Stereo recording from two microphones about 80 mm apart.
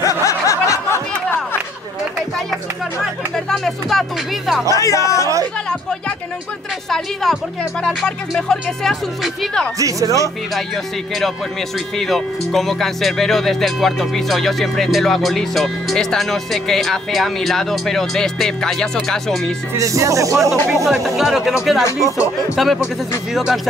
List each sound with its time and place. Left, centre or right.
0.0 s snicker: left
3.3 s speech: centre
4.7 s speech: left
6.9 s speech: centre
9.8 s speech: right
12.0 s speech: centre
19.7 s speech: right
20.7 s speech: centre
22.6 s speech: centre